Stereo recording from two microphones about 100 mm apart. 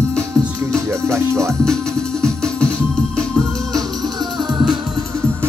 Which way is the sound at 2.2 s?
10° left (ahead or behind).